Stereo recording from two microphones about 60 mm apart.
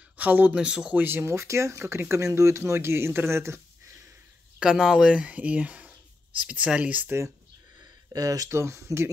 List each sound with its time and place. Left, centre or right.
0.2 s speech: right
0.6 s speech: centre
0.9 s speech: right
4.6 s speech: centre; by 7.2 s right
7.8 s a sound: right
8.5 s speech: right